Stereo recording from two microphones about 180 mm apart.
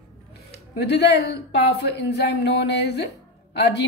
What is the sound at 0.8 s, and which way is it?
A woman's voice, 70° left (ahead or behind).